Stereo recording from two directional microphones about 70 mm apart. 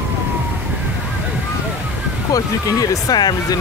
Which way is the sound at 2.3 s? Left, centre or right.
Left.